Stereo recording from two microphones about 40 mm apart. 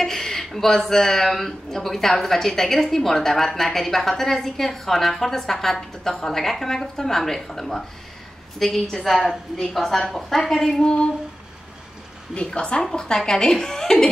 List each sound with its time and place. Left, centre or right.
0.0 s a sound: centre
0.5 s speech: centre
12.4 s a woman's voice: left